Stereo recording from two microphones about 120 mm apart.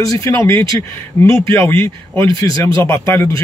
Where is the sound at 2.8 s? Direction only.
20° left (ahead or behind).